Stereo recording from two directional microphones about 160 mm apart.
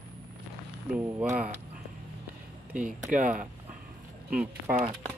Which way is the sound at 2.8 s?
55° right (ahead or behind).